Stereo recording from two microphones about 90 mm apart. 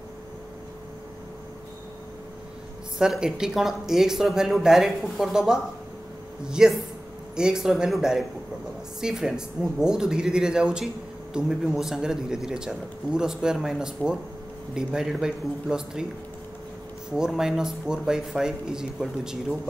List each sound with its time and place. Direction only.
3.0 s a man's voice: 5° right (ahead or behind)
17.1 s a man's voice: 5° right (ahead or behind)